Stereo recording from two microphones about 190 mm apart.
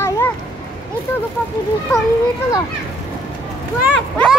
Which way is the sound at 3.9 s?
5° left (ahead or behind).